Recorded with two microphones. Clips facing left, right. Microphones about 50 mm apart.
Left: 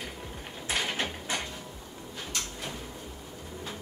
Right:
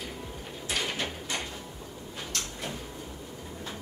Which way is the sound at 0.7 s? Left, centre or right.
Left.